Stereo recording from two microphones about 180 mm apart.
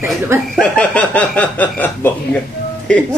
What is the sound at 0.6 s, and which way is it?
A man's voice, 5° left (ahead or behind).